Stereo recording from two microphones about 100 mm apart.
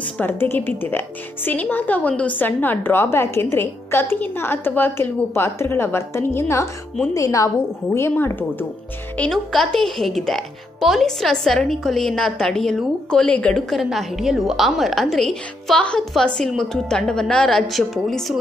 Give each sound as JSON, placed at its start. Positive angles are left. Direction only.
{"t": 0.2, "sound": "a woman's voice", "side_deg": 20}
{"t": 9.1, "sound": "a woman's voice", "side_deg": 10}